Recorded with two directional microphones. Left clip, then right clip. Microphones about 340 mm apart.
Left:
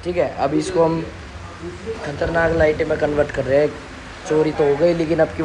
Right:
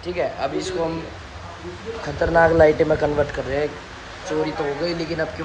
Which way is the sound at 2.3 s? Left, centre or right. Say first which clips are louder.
Right 3 dB; centre.